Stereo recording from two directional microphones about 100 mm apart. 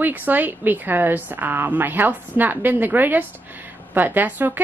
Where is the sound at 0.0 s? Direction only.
20° right (ahead or behind).